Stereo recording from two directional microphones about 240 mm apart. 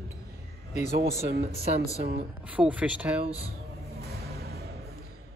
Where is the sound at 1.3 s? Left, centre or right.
Right.